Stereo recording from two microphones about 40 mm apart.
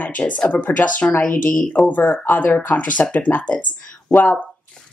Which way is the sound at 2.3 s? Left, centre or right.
Left.